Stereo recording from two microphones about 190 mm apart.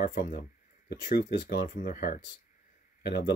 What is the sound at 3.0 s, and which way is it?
Speech, 60° left (ahead or behind).